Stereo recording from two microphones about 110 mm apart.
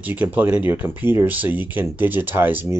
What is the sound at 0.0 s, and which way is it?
Speech, 15° right (ahead or behind).